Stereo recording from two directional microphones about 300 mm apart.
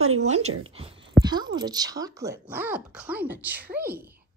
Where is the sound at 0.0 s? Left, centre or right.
Right.